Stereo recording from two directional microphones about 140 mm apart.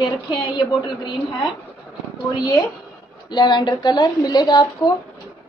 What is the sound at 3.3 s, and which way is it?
Speech, 35° left (ahead or behind).